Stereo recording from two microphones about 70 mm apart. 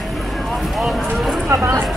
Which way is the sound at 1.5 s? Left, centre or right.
Right.